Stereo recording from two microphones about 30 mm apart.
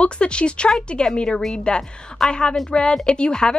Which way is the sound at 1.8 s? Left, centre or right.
Centre.